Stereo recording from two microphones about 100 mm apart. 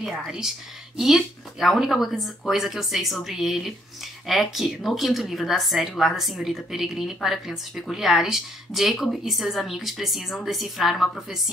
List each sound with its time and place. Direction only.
0.0 s a woman's voice: 5° right (ahead or behind)